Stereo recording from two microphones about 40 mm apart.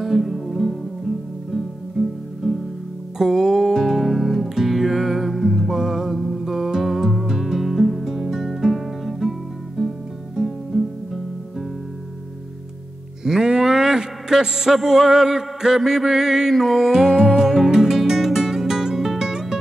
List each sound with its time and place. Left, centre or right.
0.0 s music: centre
13.2 s a sound: centre
16.6 s music: centre
16.9 s music: centre